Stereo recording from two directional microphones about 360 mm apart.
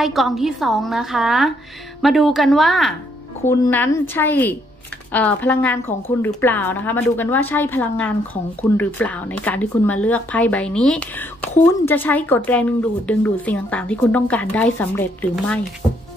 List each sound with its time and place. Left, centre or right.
0.0 s speech: centre